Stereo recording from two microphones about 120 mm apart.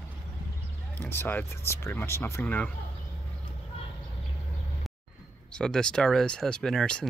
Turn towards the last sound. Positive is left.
turn(degrees=5)  # may be behind; listen again after turning